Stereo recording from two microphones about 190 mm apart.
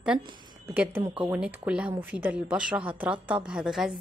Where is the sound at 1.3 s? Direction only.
5° right (ahead or behind).